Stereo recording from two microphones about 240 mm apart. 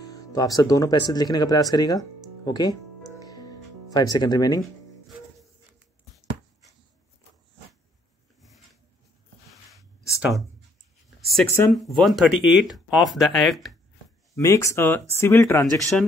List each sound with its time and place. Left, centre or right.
0.1 s speech: centre
8.4 s a sound: centre
11.1 s speech: centre
14.3 s speech: centre